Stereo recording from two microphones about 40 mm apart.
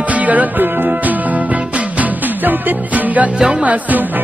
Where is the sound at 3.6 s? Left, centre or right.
Right.